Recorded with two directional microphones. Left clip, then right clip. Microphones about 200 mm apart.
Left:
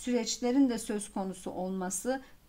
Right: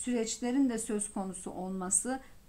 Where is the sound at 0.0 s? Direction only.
20° left (ahead or behind).